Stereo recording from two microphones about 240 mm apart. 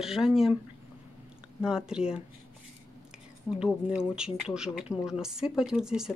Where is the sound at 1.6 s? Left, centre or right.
Centre.